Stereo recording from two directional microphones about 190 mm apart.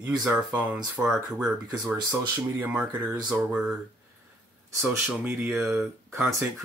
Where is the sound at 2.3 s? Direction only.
10° right (ahead or behind).